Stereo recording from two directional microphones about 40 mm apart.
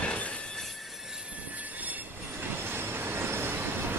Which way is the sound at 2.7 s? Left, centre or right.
Right.